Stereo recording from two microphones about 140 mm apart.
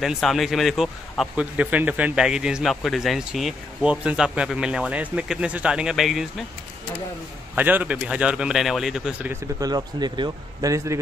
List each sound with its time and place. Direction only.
0.0 s speech: centre (ahead or behind)
7.5 s speech: 10° right (ahead or behind)
9.3 s a man's voice: 25° right (ahead or behind)